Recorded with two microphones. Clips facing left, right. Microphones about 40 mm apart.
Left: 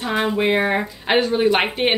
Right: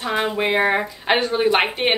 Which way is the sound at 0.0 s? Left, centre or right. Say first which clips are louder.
Left 1 dB; centre.